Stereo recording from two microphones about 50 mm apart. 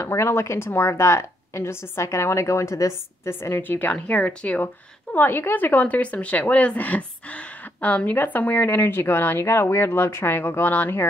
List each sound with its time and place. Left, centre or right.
0.0 s a woman's voice: left
3.3 s speech: left
4.1 s speech: left
5.1 s speech: left